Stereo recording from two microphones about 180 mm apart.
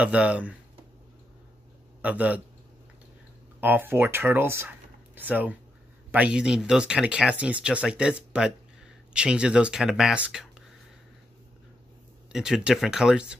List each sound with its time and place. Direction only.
0.0 s speech: 5° right (ahead or behind)
2.0 s a man's voice: 10° right (ahead or behind)
3.6 s speech: 10° right (ahead or behind)
12.3 s speech: 5° right (ahead or behind)